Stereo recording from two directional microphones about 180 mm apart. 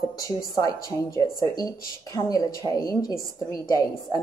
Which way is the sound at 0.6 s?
20° left (ahead or behind).